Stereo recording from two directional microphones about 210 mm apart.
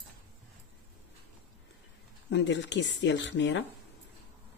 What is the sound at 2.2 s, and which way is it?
Speech, 55° left (ahead or behind).